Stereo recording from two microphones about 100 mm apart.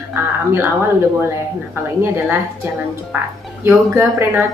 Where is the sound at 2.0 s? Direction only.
20° right (ahead or behind).